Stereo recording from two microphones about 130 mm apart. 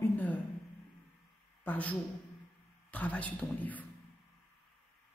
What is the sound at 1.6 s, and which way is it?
A man's voice, 10° left (ahead or behind).